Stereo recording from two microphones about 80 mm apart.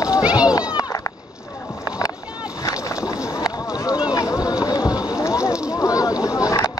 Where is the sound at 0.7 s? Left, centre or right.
Left.